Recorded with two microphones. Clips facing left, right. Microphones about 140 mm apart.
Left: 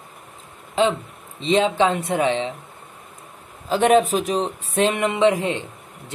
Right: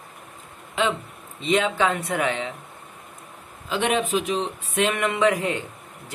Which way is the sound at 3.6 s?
40° left (ahead or behind).